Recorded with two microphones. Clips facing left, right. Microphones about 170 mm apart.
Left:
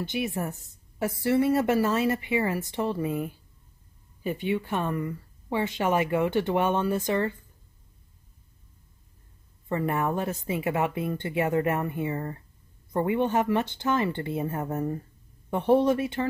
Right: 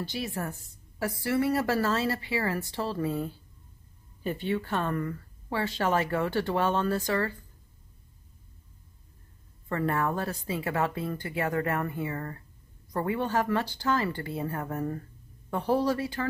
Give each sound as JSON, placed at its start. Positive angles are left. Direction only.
{"t": 0.0, "sound": "a woman's voice", "side_deg": 20}
{"t": 9.7, "sound": "speech", "side_deg": 20}